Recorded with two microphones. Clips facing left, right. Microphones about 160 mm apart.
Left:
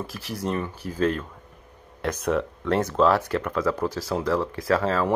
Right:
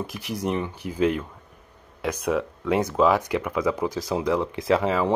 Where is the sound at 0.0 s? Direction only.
20° right (ahead or behind).